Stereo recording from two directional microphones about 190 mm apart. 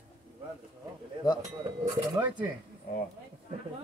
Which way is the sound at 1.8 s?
10° right (ahead or behind).